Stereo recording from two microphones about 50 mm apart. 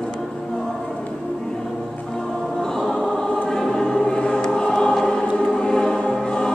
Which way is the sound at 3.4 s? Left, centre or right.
Centre.